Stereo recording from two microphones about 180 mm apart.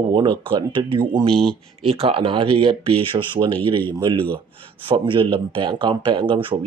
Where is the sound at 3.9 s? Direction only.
25° right (ahead or behind).